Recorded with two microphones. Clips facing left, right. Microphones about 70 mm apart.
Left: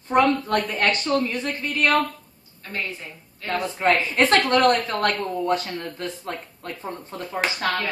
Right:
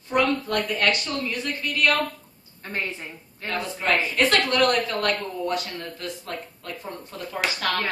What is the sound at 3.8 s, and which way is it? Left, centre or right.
A woman's voice, left.